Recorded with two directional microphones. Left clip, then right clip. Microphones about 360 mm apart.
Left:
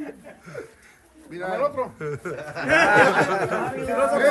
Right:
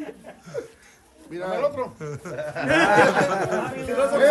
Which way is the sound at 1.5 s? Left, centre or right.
Centre.